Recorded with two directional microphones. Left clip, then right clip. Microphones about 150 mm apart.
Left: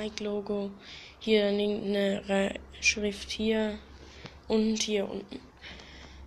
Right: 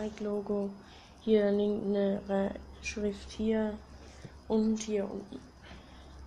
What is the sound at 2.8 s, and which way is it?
Speech, 10° right (ahead or behind).